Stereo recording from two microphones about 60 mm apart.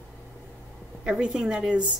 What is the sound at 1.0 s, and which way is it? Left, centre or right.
Speech, centre.